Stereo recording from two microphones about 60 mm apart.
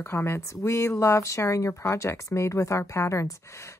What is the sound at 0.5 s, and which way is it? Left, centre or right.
Speech, left.